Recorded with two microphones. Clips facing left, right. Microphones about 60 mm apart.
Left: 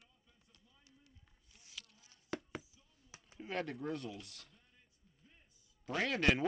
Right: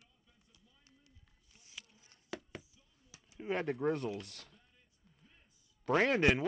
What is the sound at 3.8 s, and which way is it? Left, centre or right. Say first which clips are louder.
Speech: right 7 dB; right.